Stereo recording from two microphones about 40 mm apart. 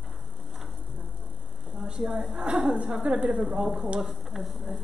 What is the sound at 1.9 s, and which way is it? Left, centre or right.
A woman's voice, centre.